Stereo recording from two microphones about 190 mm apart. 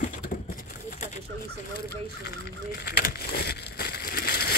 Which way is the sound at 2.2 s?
55° left (ahead or behind).